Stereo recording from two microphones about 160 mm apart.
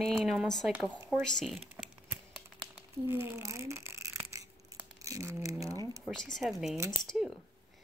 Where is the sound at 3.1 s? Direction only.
15° right (ahead or behind).